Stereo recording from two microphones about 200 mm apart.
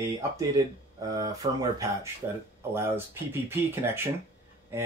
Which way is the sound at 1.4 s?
20° right (ahead or behind).